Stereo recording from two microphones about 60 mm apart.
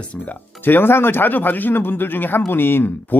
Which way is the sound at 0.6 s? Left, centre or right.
Left.